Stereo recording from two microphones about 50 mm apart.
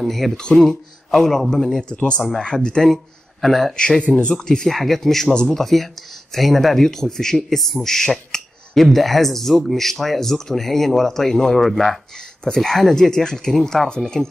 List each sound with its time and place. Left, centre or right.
0.0 s speech: centre
0.4 s speech: centre
4.2 s speech: centre
4.7 s speech: centre